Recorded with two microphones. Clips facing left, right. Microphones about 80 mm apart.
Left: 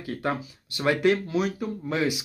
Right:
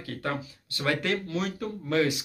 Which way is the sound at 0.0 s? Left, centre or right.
Centre.